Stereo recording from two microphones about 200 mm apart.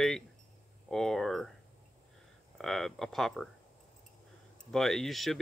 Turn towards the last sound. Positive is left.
turn(degrees=0)  # may be behind; listen again after turning